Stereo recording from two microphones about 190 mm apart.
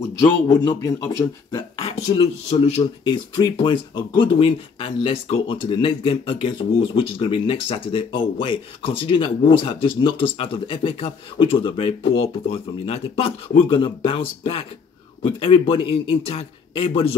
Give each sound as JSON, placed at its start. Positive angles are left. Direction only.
{"t": 0.5, "sound": "a man's voice", "side_deg": 15}
{"t": 2.0, "sound": "speech", "side_deg": 35}